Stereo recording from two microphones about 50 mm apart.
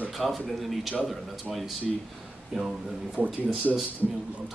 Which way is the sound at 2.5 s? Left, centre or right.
Centre.